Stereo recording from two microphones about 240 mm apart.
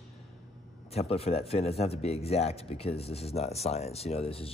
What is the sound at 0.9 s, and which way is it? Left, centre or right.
Speech, left.